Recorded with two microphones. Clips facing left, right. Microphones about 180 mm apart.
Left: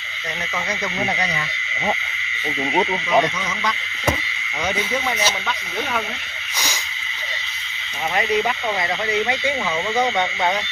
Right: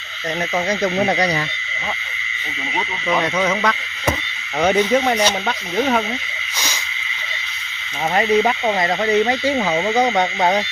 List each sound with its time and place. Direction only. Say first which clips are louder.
0.7 s speech: right 7 dB; 45° right (ahead or behind)
3.3 s speech: right 8 dB; 60° right (ahead or behind); by 6.0 s 40° right (ahead or behind)
8.1 s speech: right 5 dB; 45° right (ahead or behind)
9.7 s frog: right 2 dB; 40° right (ahead or behind)